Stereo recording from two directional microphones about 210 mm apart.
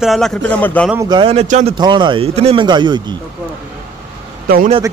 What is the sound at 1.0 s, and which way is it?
Speech, 25° right (ahead or behind).